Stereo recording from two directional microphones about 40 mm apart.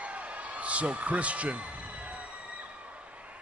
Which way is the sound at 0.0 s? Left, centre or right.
Right.